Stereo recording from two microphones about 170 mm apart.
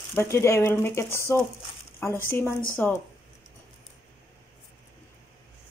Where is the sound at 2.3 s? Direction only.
15° left (ahead or behind).